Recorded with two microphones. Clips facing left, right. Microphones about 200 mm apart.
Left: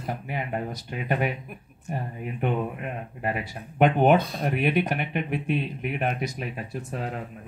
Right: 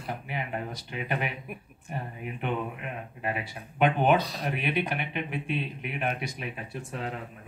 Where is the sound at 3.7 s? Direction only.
45° left (ahead or behind).